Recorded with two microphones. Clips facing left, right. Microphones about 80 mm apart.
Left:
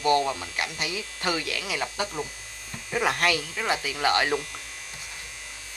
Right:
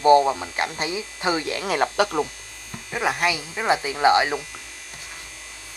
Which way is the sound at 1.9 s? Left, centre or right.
Right.